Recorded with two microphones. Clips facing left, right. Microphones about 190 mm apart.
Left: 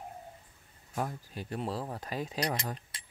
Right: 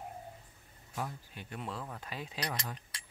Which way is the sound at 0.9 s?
40° left (ahead or behind).